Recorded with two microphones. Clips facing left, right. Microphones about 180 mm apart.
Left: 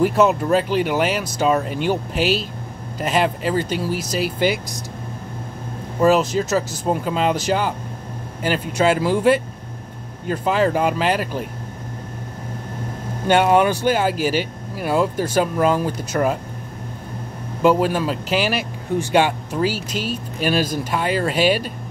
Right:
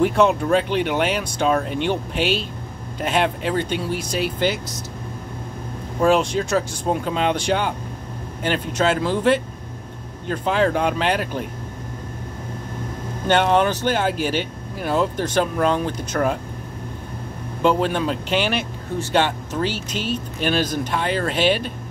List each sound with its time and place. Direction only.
0.0 s speech: 5° left (ahead or behind)
3.9 s speech: 45° left (ahead or behind)
4.2 s speech: 10° left (ahead or behind)
5.9 s speech: 5° left (ahead or behind)
13.3 s speech: 10° left (ahead or behind)
17.6 s speech: 5° left (ahead or behind)